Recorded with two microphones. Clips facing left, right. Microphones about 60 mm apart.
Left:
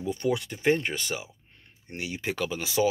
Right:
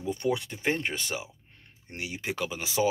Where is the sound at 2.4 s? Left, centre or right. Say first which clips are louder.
Left 2 dB; right.